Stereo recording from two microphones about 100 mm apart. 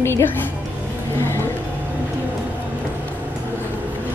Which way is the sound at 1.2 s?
25° left (ahead or behind).